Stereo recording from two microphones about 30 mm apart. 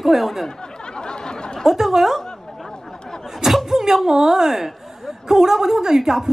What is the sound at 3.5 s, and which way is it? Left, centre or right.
Speech, centre.